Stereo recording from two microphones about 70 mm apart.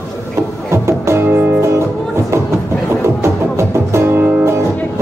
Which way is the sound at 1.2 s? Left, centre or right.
Right.